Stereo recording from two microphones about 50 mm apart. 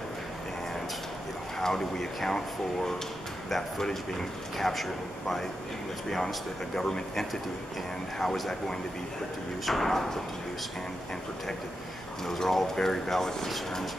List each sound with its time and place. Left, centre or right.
1.6 s speech: centre
6.0 s speech: centre
12.3 s speech: centre